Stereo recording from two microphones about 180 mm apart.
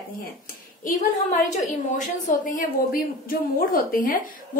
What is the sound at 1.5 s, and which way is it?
A woman's voice, 45° left (ahead or behind).